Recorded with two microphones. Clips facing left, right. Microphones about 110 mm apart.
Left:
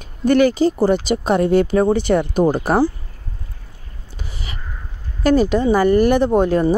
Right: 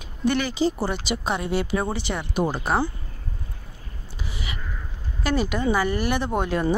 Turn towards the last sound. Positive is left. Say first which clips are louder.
# left 8 dB
turn(degrees=40)  # may be behind; listen again after turning